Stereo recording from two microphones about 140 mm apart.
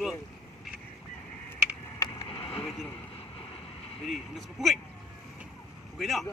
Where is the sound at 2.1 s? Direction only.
40° left (ahead or behind).